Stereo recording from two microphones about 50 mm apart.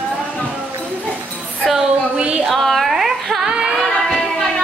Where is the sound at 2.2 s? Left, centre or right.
Right.